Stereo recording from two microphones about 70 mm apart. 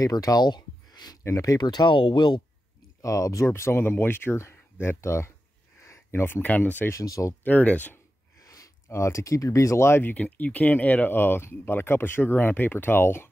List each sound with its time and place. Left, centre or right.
0.0 s speech: left
1.3 s speech: left
3.0 s speech: left
3.4 s speech: left
6.9 s speech: left
7.4 s speech: left
8.4 s a sound: left
8.8 s speech: left
10.1 s speech: left